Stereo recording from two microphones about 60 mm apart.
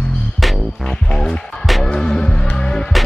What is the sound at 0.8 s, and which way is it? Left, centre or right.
Music, centre.